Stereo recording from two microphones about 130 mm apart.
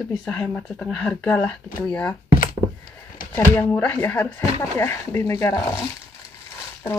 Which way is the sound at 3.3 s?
15° left (ahead or behind).